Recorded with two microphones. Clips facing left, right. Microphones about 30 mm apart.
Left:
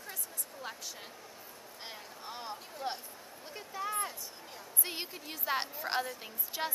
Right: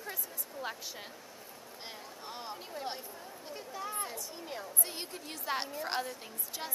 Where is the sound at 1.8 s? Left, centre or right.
Centre.